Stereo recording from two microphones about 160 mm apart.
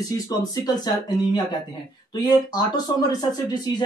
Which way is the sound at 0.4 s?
25° left (ahead or behind).